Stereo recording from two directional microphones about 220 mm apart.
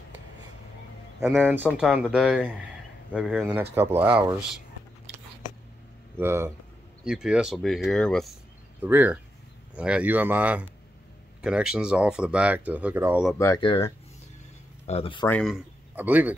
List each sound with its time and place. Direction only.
1.4 s speech: 10° right (ahead or behind)
6.1 s speech: 10° right (ahead or behind)
8.8 s speech: 10° right (ahead or behind)
13.4 s speech: 20° left (ahead or behind)
15.2 s speech: 5° left (ahead or behind)